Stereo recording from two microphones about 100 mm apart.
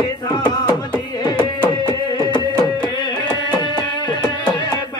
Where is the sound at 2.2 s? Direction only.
45° left (ahead or behind).